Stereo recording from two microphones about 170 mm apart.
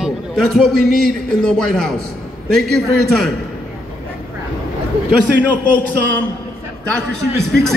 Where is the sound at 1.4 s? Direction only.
Centre (ahead or behind).